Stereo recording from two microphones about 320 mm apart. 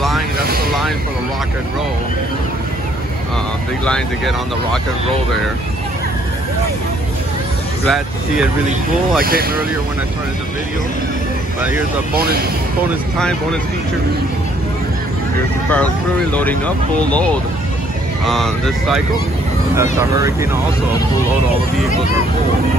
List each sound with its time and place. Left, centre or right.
3.8 s speech: centre
9.2 s speech: right
12.1 s speech: right
15.7 s speech: centre